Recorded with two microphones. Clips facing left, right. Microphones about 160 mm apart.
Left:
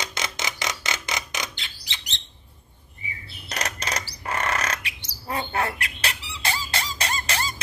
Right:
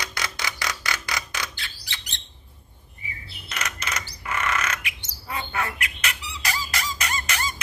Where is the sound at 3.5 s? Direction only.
35° left (ahead or behind).